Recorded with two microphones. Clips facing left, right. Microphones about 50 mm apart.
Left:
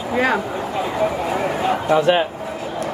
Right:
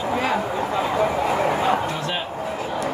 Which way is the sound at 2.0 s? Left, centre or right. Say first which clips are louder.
Left 10 dB; left.